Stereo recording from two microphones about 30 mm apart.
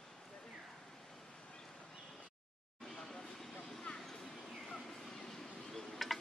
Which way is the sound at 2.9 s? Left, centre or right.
Centre.